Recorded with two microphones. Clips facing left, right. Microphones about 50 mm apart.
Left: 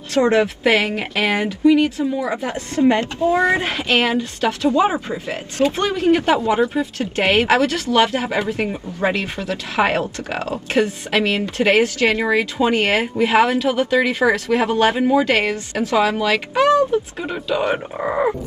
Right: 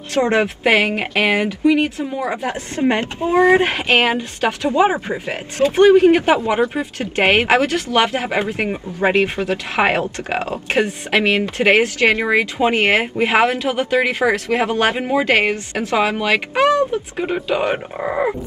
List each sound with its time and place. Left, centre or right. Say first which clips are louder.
0.1 s speech: left 1 dB; right
1.1 s speech: right 2 dB; centre
2.7 s speech: left 3 dB; right
16.3 s speech: even; right
17.6 s speech: even; centre